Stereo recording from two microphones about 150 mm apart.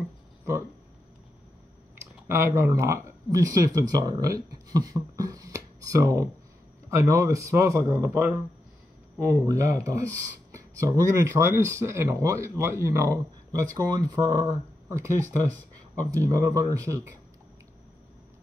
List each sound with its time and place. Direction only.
2.2 s speech: 20° right (ahead or behind)